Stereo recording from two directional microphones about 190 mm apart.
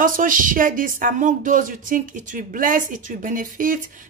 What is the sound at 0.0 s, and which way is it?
A woman's voice, 45° right (ahead or behind).